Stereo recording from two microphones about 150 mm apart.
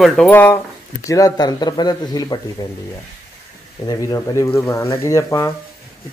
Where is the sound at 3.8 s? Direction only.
25° left (ahead or behind).